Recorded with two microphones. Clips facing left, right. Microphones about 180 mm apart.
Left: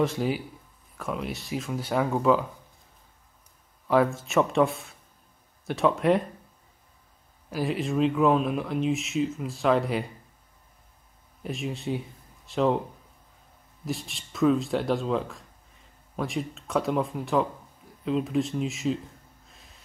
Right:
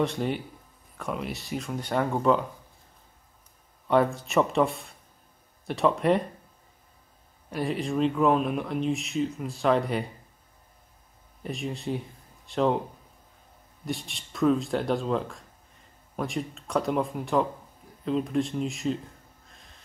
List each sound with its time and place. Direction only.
0.0 s speech: centre (ahead or behind)
3.8 s speech: centre (ahead or behind)
7.4 s speech: centre (ahead or behind)
11.4 s speech: centre (ahead or behind)
13.8 s speech: centre (ahead or behind)